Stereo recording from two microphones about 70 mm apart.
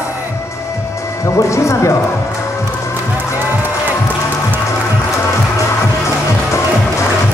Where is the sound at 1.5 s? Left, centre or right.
Left.